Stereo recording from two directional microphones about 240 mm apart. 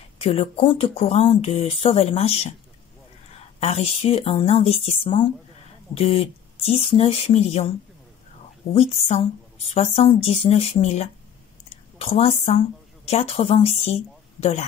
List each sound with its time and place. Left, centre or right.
0.2 s speech: left
3.5 s speech: left
8.7 s speech: left